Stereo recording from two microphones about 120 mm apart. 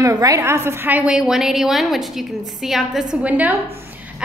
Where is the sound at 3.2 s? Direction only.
10° right (ahead or behind).